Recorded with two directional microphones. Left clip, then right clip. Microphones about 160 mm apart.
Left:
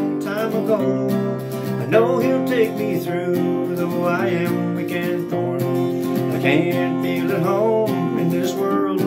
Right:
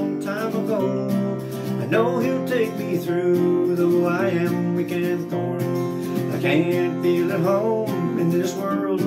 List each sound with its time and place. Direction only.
1.9 s music: 20° left (ahead or behind)